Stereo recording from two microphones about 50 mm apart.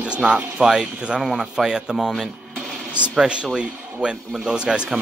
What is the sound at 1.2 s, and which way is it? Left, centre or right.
Speech, centre.